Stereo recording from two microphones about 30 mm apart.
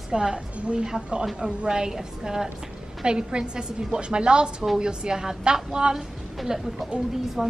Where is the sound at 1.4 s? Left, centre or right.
Right.